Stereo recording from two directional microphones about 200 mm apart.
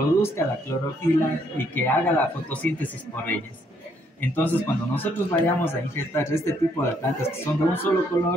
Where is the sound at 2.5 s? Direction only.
5° left (ahead or behind).